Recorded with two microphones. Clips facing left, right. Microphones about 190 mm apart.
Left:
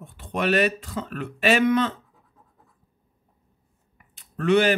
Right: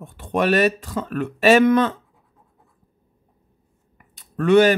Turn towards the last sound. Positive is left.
turn(degrees=-45)  # may be behind; listen again after turning